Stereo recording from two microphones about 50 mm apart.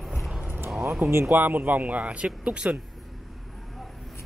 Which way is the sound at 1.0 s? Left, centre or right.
Right.